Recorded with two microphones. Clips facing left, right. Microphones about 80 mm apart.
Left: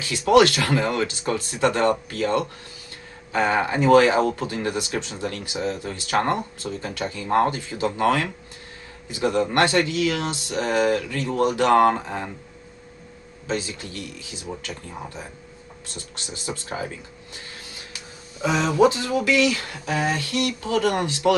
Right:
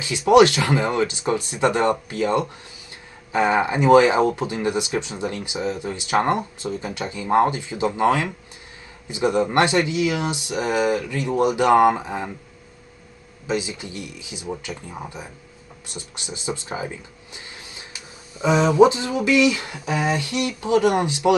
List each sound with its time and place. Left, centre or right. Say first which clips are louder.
0.0 s speech: right 2 dB; centre
13.5 s speech: right 2 dB; centre
18.4 s speech: right 4 dB; right